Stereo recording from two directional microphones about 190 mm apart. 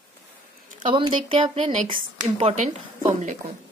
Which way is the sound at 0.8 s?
25° right (ahead or behind).